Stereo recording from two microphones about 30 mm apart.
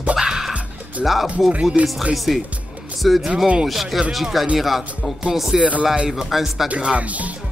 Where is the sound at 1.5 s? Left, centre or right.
Right.